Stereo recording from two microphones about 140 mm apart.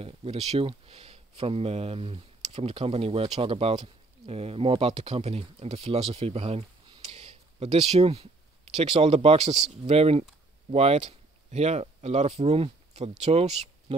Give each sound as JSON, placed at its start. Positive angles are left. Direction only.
{"t": 0.0, "sound": "speech", "side_deg": -45}